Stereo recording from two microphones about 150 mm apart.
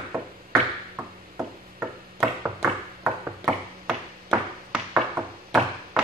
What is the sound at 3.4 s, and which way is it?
Ping, 5° right (ahead or behind).